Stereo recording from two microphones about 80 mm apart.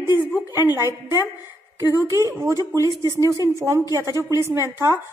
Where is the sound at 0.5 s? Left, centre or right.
Right.